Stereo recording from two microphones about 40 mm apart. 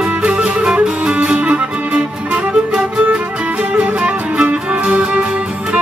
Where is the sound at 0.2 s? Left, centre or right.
Right.